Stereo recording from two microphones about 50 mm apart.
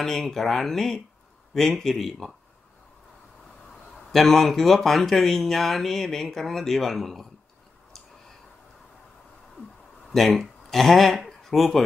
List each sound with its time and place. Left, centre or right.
0.0 s speech: centre
3.9 s speech: centre
10.1 s speech: centre